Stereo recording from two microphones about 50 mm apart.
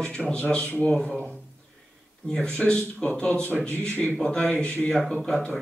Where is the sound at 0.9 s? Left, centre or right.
Centre.